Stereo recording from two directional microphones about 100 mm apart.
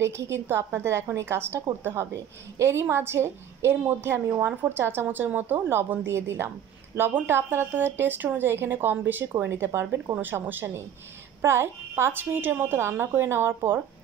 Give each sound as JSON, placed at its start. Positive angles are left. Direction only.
{"t": 0.0, "sound": "a woman's voice", "side_deg": -25}